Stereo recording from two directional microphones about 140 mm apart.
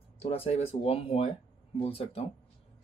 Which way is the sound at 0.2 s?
45° left (ahead or behind).